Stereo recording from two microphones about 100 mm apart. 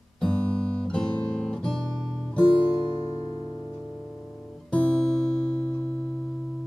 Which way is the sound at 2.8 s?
45° left (ahead or behind).